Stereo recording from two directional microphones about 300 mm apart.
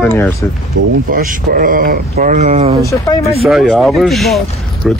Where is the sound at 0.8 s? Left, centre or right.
Right.